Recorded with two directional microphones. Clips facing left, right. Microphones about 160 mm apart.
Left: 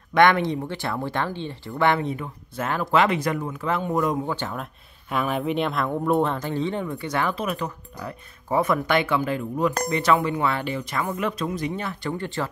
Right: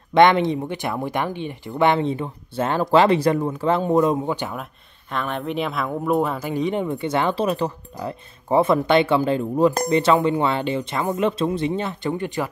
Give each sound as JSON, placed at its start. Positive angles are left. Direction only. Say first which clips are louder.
{"t": 0.1, "sound": "speech", "louder": "right 3 dB", "side_deg": -20}
{"t": 5.1, "sound": "speech", "louder": "left 1 dB", "side_deg": 5}